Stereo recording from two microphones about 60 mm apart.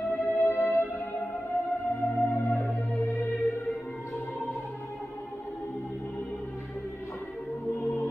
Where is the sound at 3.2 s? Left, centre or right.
Left.